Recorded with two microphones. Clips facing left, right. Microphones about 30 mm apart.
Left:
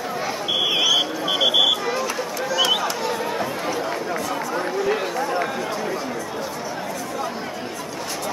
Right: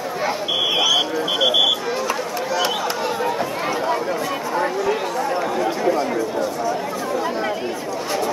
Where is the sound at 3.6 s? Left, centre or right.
Centre.